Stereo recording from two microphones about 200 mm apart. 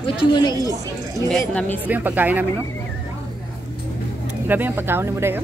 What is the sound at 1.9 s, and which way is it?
Speech, 10° right (ahead or behind).